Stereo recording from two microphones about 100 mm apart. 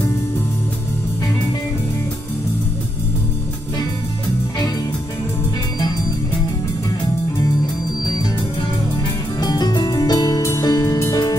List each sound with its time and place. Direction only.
9.4 s music: 45° left (ahead or behind)